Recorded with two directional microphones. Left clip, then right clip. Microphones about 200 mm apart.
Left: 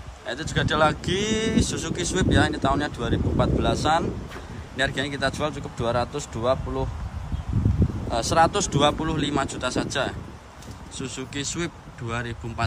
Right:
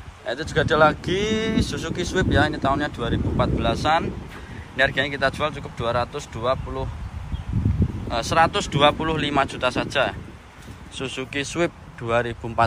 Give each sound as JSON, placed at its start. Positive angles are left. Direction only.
{"t": 0.3, "sound": "speech", "side_deg": 10}
{"t": 8.1, "sound": "speech", "side_deg": 15}